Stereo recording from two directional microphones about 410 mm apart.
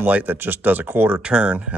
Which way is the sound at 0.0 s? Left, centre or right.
Centre.